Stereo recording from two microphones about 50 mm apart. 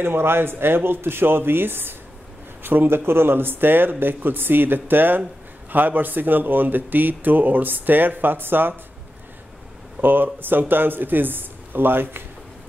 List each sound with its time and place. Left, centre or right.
0.0 s speech: right
10.0 s speech: right